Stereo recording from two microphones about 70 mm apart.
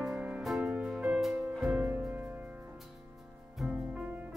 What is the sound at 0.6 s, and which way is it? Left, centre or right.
Music, centre.